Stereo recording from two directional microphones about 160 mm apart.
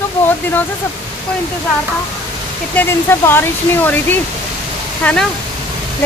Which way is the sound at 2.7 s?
15° left (ahead or behind).